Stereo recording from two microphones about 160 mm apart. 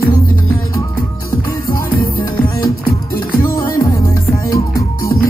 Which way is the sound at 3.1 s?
65° left (ahead or behind).